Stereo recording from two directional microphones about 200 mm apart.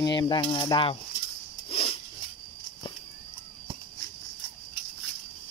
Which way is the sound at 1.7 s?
30° left (ahead or behind).